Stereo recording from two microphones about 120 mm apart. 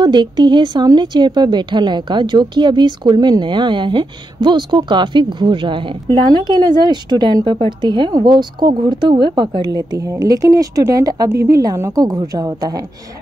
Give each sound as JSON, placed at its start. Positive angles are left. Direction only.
{"t": 0.0, "sound": "speech", "side_deg": -40}